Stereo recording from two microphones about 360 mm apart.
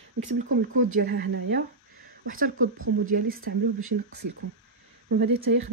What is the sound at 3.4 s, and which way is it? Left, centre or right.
Speech, right.